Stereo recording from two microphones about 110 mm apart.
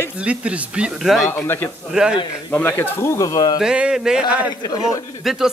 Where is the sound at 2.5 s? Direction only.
20° left (ahead or behind); by 3.6 s 35° left (ahead or behind).